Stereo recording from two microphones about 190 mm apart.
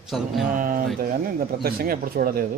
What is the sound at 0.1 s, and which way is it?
Speech, centre (ahead or behind).